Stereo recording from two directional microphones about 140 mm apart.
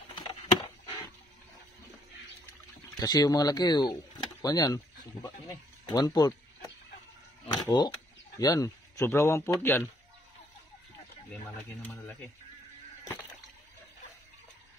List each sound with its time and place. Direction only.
3.0 s speech: 30° left (ahead or behind)
7.4 s a sound: 25° left (ahead or behind)
8.4 s speech: 25° left (ahead or behind)
11.9 s speech: centre (ahead or behind)